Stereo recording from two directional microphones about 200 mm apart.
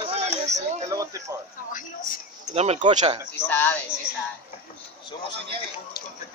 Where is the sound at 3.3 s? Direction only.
10° left (ahead or behind).